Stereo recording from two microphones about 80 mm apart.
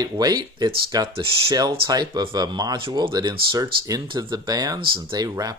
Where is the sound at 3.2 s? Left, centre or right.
Right.